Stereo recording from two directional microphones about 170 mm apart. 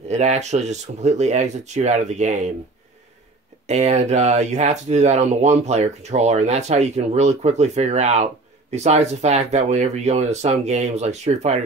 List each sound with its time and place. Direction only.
0.1 s speech: 40° right (ahead or behind)
3.6 s speech: 40° right (ahead or behind)